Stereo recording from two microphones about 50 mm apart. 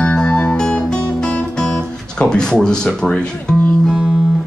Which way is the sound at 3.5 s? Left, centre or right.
Left.